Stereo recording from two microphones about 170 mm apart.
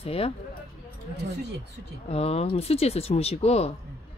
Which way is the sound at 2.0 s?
35° left (ahead or behind).